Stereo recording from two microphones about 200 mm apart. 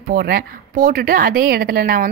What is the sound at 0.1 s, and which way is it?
A woman's voice, 45° right (ahead or behind).